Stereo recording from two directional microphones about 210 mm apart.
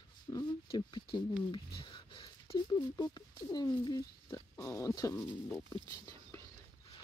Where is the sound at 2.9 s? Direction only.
20° left (ahead or behind).